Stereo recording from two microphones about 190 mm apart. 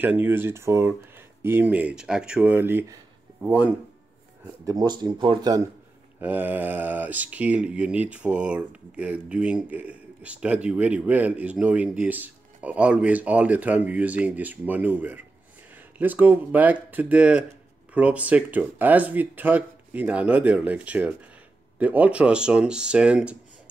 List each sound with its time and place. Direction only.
0.0 s speech: 10° right (ahead or behind)
4.6 s speech: 20° right (ahead or behind)
6.1 s speech: 10° right (ahead or behind)